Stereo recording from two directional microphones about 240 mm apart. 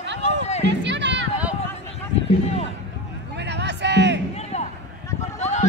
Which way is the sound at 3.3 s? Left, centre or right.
Right.